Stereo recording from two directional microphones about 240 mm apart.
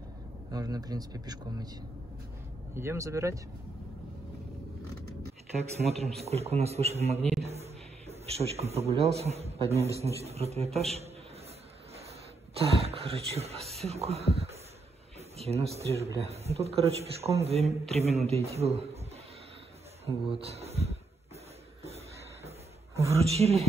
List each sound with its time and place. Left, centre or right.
0.5 s a man's voice: centre
2.7 s a man's voice: centre
5.6 s a man's voice: right
7.2 s a man's voice: centre
7.4 s a man's voice: right
12.5 s a man's voice: right
20.2 s speech: right
21.8 s a sound: right
23.1 s a man's voice: right